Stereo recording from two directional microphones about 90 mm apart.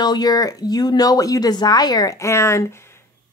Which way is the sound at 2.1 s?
30° left (ahead or behind).